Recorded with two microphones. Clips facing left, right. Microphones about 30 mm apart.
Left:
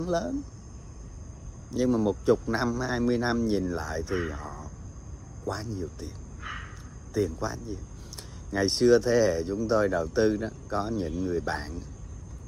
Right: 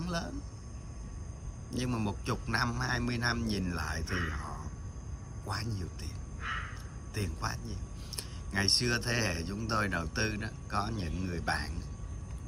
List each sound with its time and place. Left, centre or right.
0.0 s speech: right
1.7 s speech: right
4.2 s speech: centre
5.5 s speech: right
6.4 s a sound: centre
7.2 s speech: right